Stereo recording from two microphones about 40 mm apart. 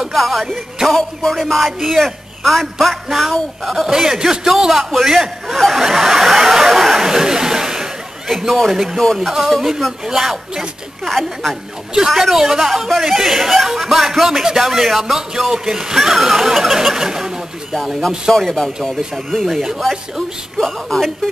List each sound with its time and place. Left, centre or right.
0.1 s a man's voice: centre
1.3 s a man's voice: centre
3.1 s speech: centre
8.4 s a man's voice: centre
9.0 s a man's voice: centre
9.6 s a man's voice: centre
18.3 s a woman's voice: centre
19.4 s a man's voice: centre
20.5 s a woman's voice: centre